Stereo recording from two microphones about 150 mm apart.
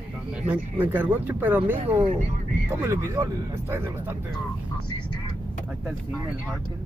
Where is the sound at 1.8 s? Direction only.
35° right (ahead or behind).